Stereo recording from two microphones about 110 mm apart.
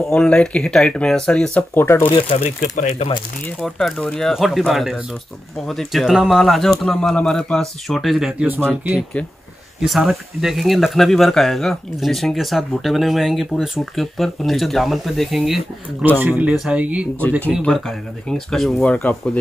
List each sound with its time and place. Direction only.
0.0 s speech: 10° left (ahead or behind)
1.7 s speech: 20° left (ahead or behind)
2.2 s speech: 75° left (ahead or behind)
3.6 s speech: 5° left (ahead or behind)
9.8 s speech: centre (ahead or behind)
16.2 s speech: 15° right (ahead or behind)
17.6 s speech: 5° left (ahead or behind)